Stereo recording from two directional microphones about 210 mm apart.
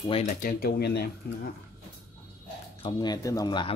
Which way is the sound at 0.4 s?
45° left (ahead or behind).